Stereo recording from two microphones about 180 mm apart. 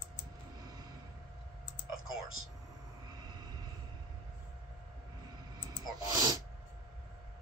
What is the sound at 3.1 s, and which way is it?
Vehicle, 20° right (ahead or behind).